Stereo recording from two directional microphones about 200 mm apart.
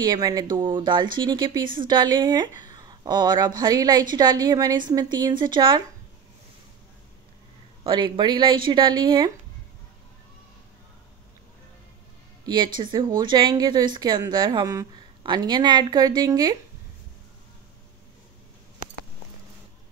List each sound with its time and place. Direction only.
0.0 s speech: 20° right (ahead or behind)
7.8 s speech: 25° right (ahead or behind)
12.4 s speech: 20° right (ahead or behind)